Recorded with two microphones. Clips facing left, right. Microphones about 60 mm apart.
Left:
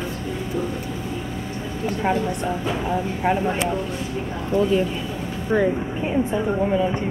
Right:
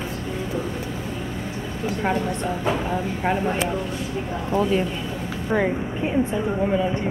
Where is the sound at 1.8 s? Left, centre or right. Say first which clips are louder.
Left 1 dB; centre.